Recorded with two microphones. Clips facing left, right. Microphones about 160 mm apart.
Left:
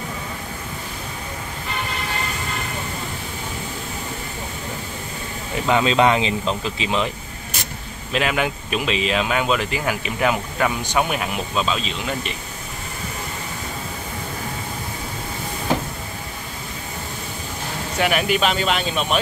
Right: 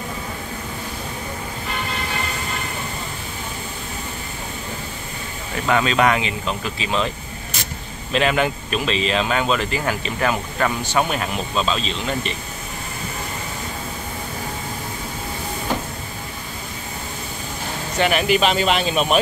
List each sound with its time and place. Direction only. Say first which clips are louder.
5.7 s speech: left 1 dB; 20° left (ahead or behind)
8.1 s speech: right 2 dB; 5° left (ahead or behind)
17.9 s speech: right 2 dB; 5° left (ahead or behind)